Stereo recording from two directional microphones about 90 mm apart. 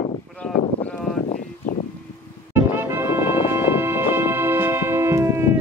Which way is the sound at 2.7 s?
25° right (ahead or behind).